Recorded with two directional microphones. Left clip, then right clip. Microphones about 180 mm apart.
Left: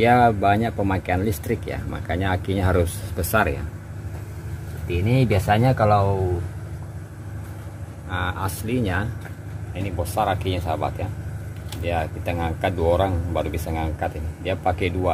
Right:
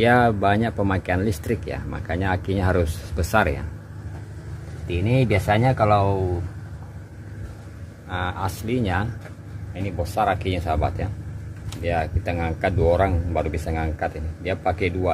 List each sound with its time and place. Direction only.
0.0 s speech: 15° right (ahead or behind)
4.8 s speech: 5° right (ahead or behind)
8.1 s speech: 15° right (ahead or behind)